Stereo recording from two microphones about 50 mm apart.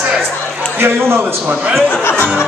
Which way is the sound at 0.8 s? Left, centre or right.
Right.